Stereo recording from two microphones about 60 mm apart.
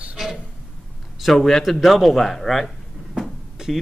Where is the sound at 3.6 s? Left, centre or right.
Centre.